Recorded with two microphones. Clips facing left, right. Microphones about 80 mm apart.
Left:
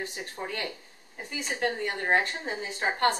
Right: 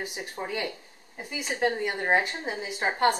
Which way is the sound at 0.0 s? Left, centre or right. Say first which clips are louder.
Right 1 dB; centre.